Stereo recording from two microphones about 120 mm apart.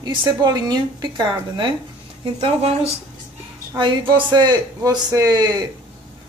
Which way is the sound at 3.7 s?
40° right (ahead or behind).